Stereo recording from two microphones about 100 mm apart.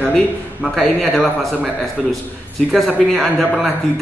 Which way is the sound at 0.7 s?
15° left (ahead or behind).